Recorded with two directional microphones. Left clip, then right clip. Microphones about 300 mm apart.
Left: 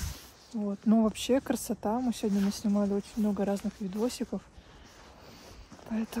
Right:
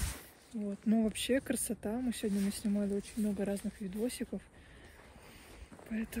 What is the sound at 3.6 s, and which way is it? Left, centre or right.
Speech, centre.